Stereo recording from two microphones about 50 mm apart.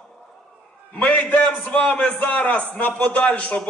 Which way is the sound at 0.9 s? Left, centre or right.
Left.